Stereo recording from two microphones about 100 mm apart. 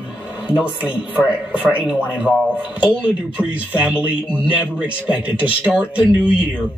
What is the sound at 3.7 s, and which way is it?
Speech, 15° right (ahead or behind).